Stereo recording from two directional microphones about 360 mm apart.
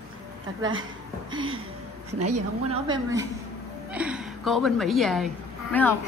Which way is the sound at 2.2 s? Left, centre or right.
Right.